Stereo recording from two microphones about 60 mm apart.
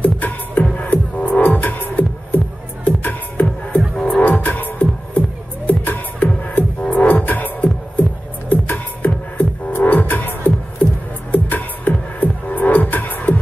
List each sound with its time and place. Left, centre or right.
0.0 s music: left